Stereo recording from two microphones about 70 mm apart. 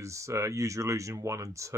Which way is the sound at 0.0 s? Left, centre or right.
Right.